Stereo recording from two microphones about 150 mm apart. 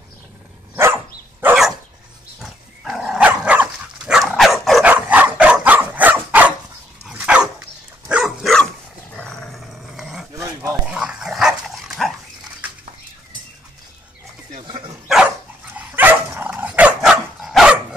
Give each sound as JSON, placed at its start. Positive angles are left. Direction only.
{"t": 0.7, "sound": "dog", "side_deg": -15}
{"t": 2.4, "sound": "dog", "side_deg": 0}
{"t": 10.4, "sound": "dog", "side_deg": -20}
{"t": 11.0, "sound": "dog", "side_deg": -5}
{"t": 15.0, "sound": "dog", "side_deg": 0}